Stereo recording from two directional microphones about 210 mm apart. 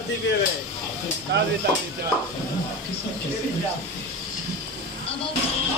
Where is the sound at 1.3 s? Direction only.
55° right (ahead or behind).